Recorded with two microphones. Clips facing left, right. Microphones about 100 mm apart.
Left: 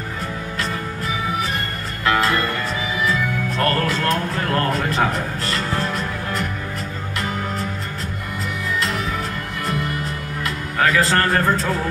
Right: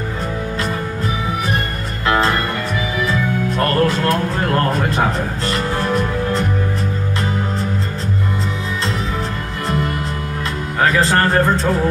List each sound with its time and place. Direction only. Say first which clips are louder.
2.1 s music: right 3 dB; 25° right (ahead or behind)
3.5 s music: right 4 dB; 20° right (ahead or behind)
10.8 s speech: right 2 dB; 25° right (ahead or behind)